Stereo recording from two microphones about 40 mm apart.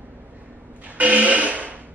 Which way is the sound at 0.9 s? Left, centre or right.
Right.